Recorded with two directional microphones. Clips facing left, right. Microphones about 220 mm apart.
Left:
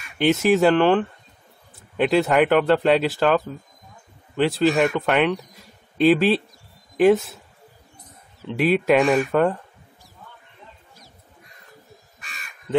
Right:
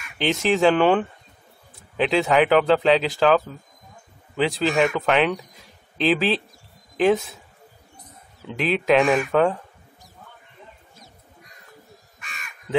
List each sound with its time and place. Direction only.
0.2 s speech: 5° left (ahead or behind)
8.5 s speech: 5° left (ahead or behind)
12.2 s crow: 35° left (ahead or behind)